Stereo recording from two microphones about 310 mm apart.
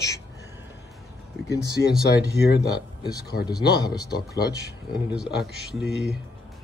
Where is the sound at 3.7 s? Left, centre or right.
Centre.